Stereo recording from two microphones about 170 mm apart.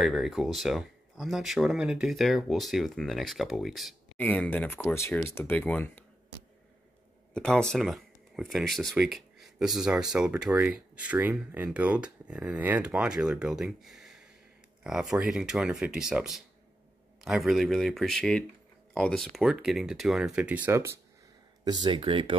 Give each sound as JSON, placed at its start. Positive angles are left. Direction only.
{"t": 0.0, "sound": "speech", "side_deg": 0}
{"t": 7.3, "sound": "speech", "side_deg": 5}
{"t": 21.6, "sound": "speech", "side_deg": -25}